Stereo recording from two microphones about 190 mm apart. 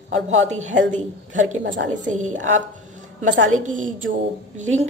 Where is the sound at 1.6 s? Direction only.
70° right (ahead or behind).